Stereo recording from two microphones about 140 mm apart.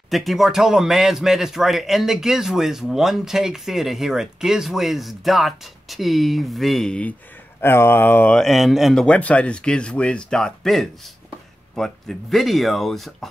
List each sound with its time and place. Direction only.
0.1 s a man's voice: centre (ahead or behind)
8.4 s a man's voice: centre (ahead or behind)